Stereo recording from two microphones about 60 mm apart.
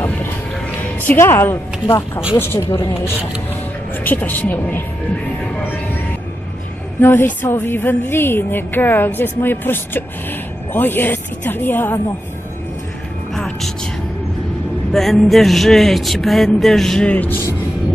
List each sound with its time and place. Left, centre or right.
1.1 s a woman's voice: left
4.0 s a woman's voice: left
7.0 s a woman's voice: left
14.9 s a sound: centre
17.1 s speech: left